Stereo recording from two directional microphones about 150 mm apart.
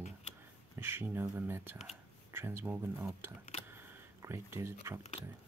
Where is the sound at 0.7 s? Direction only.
15° right (ahead or behind).